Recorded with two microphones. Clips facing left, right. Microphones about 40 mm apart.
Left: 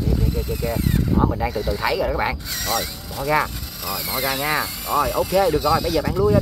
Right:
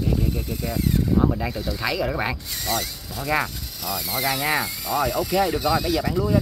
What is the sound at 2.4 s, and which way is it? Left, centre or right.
Speech, left.